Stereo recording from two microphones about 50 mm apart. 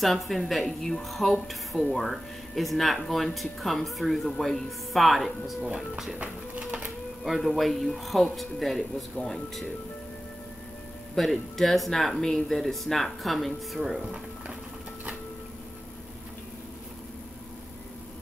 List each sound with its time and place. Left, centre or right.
0.0 s speech: centre
6.1 s music: right
7.2 s speech: centre
11.1 s speech: centre